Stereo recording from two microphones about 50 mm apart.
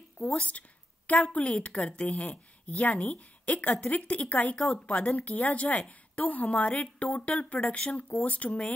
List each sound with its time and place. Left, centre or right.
0.2 s a woman's voice: left
4.6 s a woman's voice: centre
4.8 s a woman's voice: left